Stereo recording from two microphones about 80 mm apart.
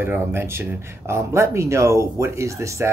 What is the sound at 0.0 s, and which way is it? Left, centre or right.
Speech, right.